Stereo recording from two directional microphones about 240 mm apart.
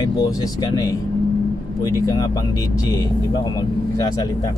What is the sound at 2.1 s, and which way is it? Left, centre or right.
Speech, centre.